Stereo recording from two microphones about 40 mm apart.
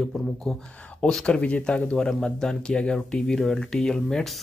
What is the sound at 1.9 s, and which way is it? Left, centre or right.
Speech, centre.